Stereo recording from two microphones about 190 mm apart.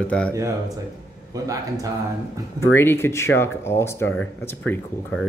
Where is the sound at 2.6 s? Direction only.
15° left (ahead or behind).